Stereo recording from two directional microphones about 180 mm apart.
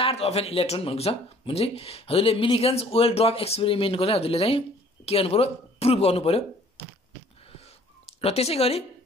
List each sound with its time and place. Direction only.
0.0 s speech: 35° left (ahead or behind)
8.2 s speech: 35° left (ahead or behind)